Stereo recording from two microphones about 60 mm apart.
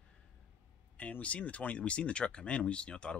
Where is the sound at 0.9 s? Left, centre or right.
Left.